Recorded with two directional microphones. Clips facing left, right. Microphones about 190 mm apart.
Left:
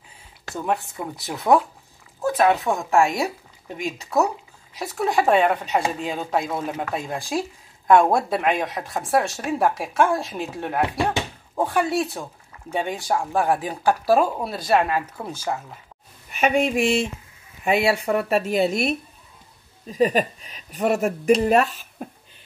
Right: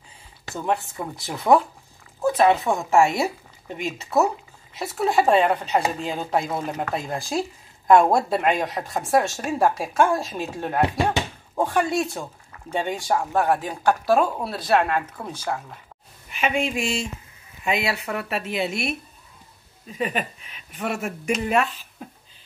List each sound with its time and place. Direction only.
0.5 s speech: centre (ahead or behind)
16.3 s speech: 45° left (ahead or behind)
16.8 s speech: 65° left (ahead or behind)
18.0 s a woman's voice: 40° left (ahead or behind)